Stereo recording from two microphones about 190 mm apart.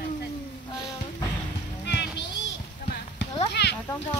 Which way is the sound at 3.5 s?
60° left (ahead or behind).